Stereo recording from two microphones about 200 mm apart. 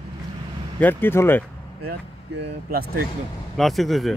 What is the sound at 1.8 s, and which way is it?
Speech, 55° right (ahead or behind).